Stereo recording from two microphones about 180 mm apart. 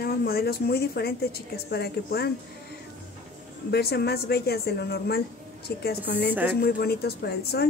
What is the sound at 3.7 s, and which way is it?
A woman's voice, 65° left (ahead or behind).